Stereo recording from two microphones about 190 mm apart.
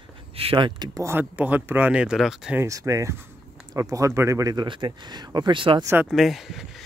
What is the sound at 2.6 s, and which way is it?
Speech, 15° right (ahead or behind).